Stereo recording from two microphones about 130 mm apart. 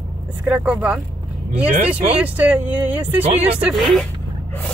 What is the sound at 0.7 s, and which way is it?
Speech, 5° right (ahead or behind).